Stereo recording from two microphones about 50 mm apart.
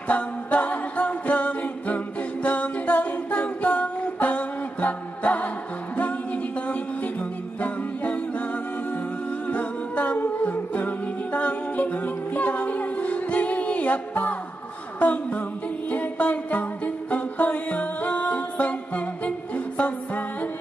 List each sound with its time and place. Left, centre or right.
0.1 s a capella: left
5.9 s music: left
9.5 s music: left